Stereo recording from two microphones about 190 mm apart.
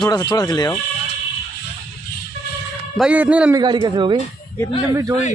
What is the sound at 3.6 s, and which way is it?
Speech, 20° right (ahead or behind).